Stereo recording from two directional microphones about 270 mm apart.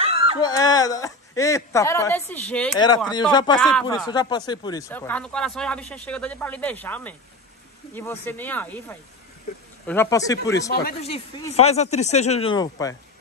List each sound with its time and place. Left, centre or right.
0.0 s dog: right
0.4 s a woman's voice: centre
3.5 s speech: centre
3.8 s a woman's voice: centre
10.7 s speech: left
11.0 s speech: left